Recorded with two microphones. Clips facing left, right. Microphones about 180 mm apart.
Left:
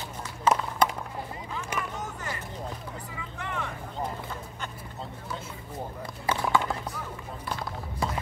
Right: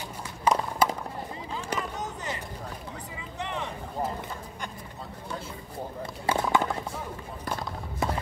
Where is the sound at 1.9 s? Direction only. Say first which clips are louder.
Right 1 dB; 20° right (ahead or behind).